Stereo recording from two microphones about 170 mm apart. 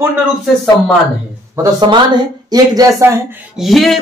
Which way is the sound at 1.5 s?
20° right (ahead or behind).